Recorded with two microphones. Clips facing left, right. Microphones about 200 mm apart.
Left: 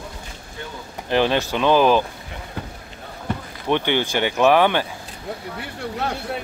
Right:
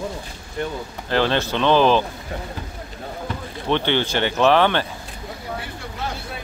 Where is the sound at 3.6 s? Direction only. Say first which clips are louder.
Even; 10° left (ahead or behind).